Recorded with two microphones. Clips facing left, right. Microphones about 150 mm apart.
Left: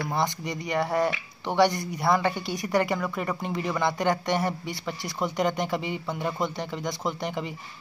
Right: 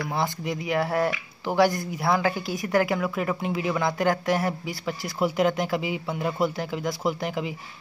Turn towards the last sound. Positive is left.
turn(degrees=-5)  # may be behind; listen again after turning